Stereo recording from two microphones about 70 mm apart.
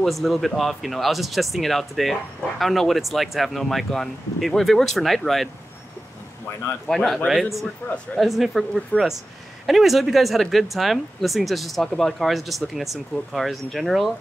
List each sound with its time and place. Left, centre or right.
0.0 s speech: centre
7.3 s speech: centre
7.8 s speech: left
8.2 s speech: centre